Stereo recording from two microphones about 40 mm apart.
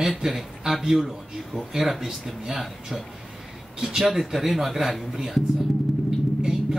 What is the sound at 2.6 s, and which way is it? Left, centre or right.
Speech, centre.